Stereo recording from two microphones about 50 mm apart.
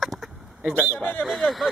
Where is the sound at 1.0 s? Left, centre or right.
Left.